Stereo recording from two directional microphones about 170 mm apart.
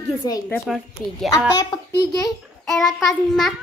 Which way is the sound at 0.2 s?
20° left (ahead or behind).